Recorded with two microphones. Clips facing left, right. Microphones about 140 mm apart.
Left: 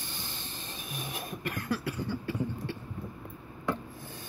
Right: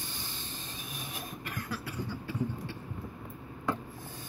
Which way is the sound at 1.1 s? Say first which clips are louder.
Left 5 dB; 65° left (ahead or behind).